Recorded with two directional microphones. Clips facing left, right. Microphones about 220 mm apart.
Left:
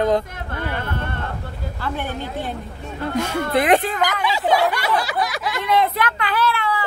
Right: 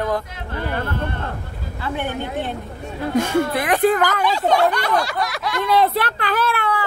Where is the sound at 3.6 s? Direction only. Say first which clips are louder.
Left 5 dB; 25° left (ahead or behind).